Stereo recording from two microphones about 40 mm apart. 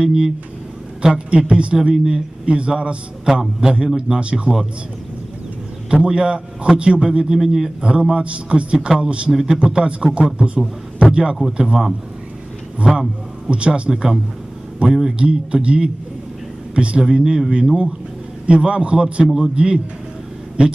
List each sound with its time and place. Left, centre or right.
0.0 s a man's voice: centre
5.9 s a man's voice: right
7.3 s a man's voice: centre
7.8 s a man's voice: right
8.7 s a man's voice: centre
9.3 s a man's voice: centre
9.6 s a man's voice: right
13.8 s a man's voice: centre
14.8 s a man's voice: right
17.0 s a man's voice: centre
17.5 s a man's voice: right
19.2 s a man's voice: centre
19.5 s a man's voice: right